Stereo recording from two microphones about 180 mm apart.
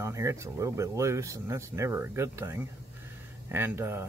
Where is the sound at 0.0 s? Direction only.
15° right (ahead or behind).